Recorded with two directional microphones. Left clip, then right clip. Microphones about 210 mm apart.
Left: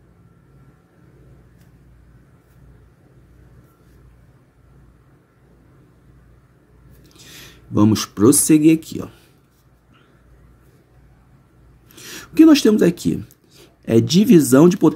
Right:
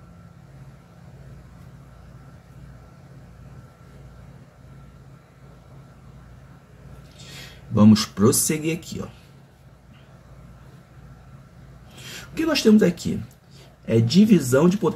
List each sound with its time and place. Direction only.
7.2 s speech: 50° left (ahead or behind)
12.0 s a sound: 50° left (ahead or behind)
13.8 s speech: 55° left (ahead or behind)